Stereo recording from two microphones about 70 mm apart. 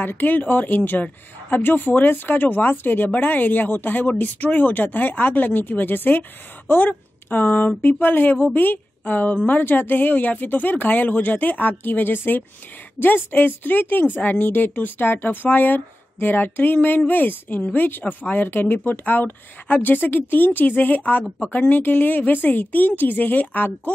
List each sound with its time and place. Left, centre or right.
0.0 s speech: left